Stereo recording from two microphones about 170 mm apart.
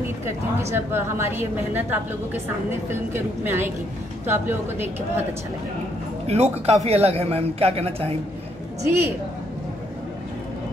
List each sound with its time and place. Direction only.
0.6 s a woman's voice: 15° right (ahead or behind)
6.2 s a man's voice: 40° right (ahead or behind)
8.8 s a woman's voice: 15° right (ahead or behind)